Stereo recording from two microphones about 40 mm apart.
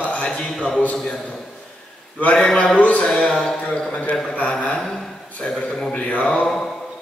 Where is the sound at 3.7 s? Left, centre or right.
Left.